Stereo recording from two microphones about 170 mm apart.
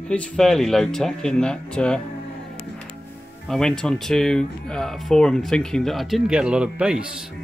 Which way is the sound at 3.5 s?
5° left (ahead or behind).